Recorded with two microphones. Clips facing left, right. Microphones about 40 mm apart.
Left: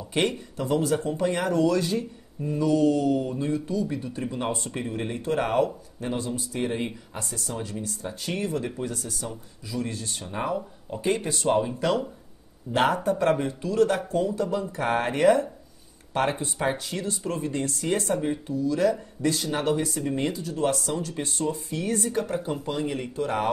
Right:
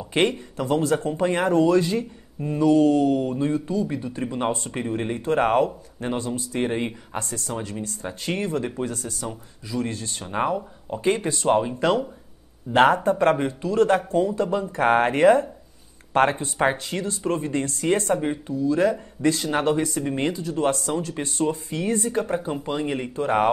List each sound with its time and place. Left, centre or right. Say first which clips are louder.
0.1 s speech: right 4 dB; right